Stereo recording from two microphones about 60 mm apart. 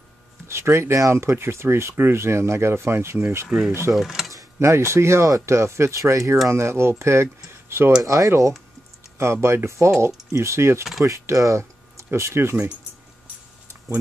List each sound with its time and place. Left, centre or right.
0.5 s speech: right
3.9 s speech: centre
4.6 s speech: right
8.0 s speech: right
11.1 s a sound: right
12.1 s speech: right